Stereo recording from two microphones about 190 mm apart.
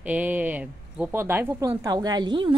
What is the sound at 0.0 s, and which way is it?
Speech, 5° right (ahead or behind).